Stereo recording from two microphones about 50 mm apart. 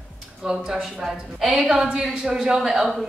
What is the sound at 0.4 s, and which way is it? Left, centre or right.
Speech, centre.